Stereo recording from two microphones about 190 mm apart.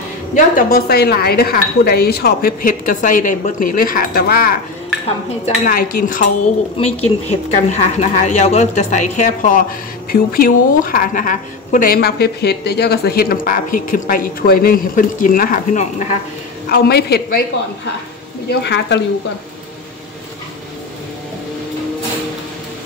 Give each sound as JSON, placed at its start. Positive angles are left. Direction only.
{"t": 0.3, "sound": "a woman's voice", "side_deg": 45}
{"t": 5.7, "sound": "a woman's voice", "side_deg": 50}
{"t": 6.8, "sound": "a woman's voice", "side_deg": 35}
{"t": 16.6, "sound": "a woman's voice", "side_deg": 55}
{"t": 18.5, "sound": "a woman's voice", "side_deg": 60}